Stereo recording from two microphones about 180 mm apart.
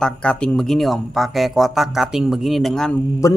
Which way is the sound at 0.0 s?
5° left (ahead or behind).